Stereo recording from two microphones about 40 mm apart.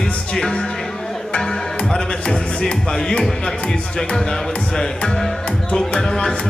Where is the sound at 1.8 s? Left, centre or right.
Centre.